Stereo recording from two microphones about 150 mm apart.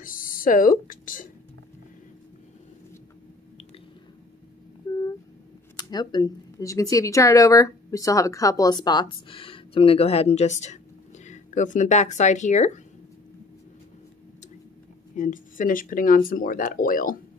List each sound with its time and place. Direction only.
0.0 s speech: 65° left (ahead or behind)
5.8 s speech: 25° left (ahead or behind); by 12.8 s 50° left (ahead or behind)
15.1 s speech: 60° left (ahead or behind)